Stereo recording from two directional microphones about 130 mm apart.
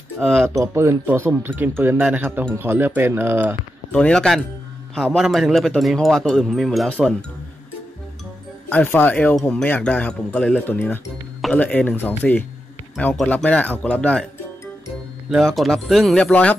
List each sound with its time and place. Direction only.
0.2 s speech: 5° right (ahead or behind)
0.6 s speech: 20° right (ahead or behind)
3.9 s speech: 5° left (ahead or behind)
8.6 s speech: 15° left (ahead or behind)
15.2 s speech: centre (ahead or behind)